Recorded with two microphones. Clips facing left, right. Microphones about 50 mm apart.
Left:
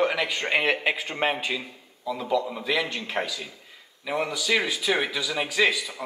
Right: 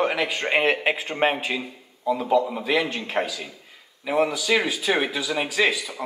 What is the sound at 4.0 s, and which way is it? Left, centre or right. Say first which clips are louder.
Speech: right 6 dB; centre.